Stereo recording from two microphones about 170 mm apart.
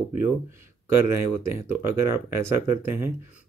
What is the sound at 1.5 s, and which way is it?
Speech, 15° right (ahead or behind).